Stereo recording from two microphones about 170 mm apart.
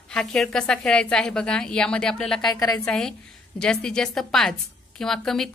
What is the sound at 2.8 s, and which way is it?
A woman's voice, 5° left (ahead or behind).